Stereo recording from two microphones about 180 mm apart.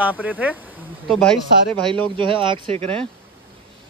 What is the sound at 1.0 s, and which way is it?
Speech, 5° left (ahead or behind).